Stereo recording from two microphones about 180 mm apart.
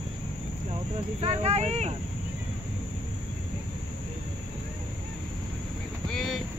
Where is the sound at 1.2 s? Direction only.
35° right (ahead or behind).